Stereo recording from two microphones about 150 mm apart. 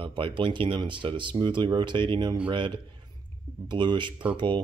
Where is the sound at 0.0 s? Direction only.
35° right (ahead or behind).